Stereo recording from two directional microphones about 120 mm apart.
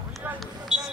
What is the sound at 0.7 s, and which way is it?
Smoke detector, 5° right (ahead or behind).